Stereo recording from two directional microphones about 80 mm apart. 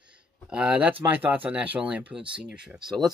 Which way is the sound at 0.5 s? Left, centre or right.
Centre.